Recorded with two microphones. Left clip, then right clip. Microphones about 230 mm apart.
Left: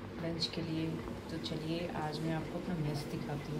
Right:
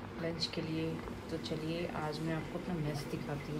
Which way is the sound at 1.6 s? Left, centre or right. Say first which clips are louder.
Even; right.